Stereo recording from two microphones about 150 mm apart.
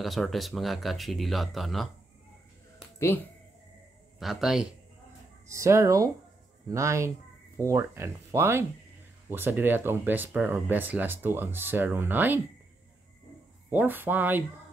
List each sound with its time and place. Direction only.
0.0 s speech: centre (ahead or behind)
4.2 s speech: centre (ahead or behind)
5.5 s speech: 20° right (ahead or behind)
13.7 s speech: 10° right (ahead or behind)